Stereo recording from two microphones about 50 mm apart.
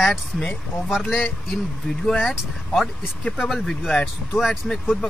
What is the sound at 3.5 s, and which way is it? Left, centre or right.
Speech, centre.